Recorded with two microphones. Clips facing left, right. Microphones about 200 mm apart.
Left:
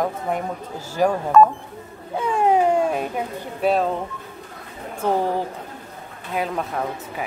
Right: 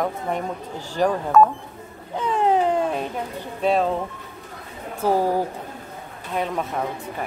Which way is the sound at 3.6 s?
Centre (ahead or behind).